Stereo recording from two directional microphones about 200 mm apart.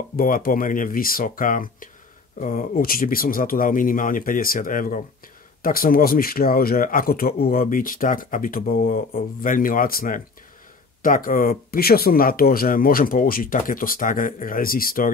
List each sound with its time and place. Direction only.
0.1 s speech: 45° left (ahead or behind)